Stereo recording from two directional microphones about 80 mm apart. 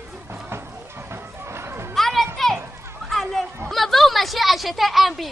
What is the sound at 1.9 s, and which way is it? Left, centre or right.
Children playing, centre.